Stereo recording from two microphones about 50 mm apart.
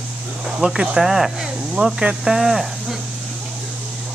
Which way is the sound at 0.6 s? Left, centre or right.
Centre.